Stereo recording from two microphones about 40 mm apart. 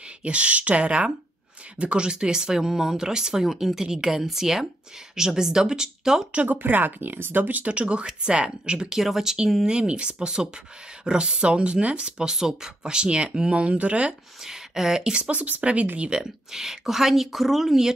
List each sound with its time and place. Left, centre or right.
0.2 s speech: right; by 6.2 s centre
6.3 s speech: right
6.6 s speech: right; by 9.7 s centre
9.7 s speech: right
14.4 s speech: centre
15.1 s speech: right
16.2 s speech: centre